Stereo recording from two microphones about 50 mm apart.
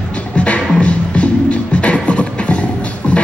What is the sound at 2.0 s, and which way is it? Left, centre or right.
Beatboxing, left.